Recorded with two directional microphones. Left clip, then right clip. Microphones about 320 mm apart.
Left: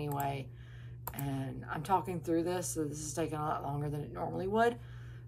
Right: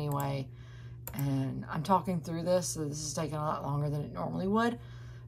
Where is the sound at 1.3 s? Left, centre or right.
Centre.